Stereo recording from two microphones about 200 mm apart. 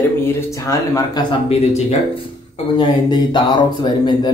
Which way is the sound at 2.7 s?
25° left (ahead or behind).